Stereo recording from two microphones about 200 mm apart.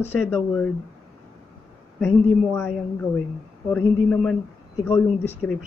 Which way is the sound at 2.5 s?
10° left (ahead or behind).